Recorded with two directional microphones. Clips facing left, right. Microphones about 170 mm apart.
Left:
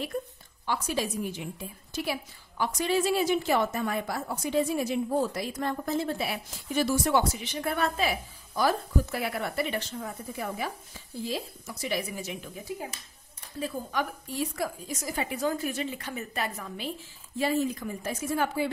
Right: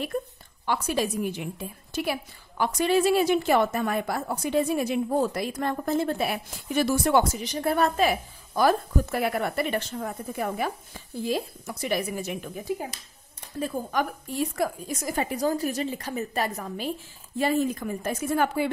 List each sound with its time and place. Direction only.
0.7 s a woman's voice: 60° right (ahead or behind)
7.3 s a woman's voice: 40° right (ahead or behind)
13.6 s a woman's voice: 50° right (ahead or behind)
17.4 s a woman's voice: 55° right (ahead or behind)